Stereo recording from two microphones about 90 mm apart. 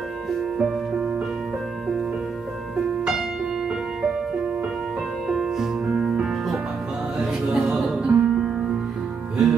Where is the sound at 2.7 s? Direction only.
5° right (ahead or behind).